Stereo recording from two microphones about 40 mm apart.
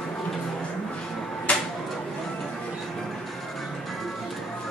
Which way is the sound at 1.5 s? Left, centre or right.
Left.